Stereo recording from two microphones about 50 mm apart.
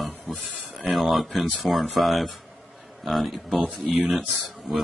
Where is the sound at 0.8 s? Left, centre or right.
Centre.